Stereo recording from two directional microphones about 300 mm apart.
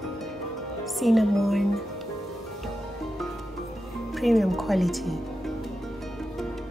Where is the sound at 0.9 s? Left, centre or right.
Centre.